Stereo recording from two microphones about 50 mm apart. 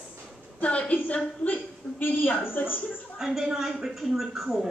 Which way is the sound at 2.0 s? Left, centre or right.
Left.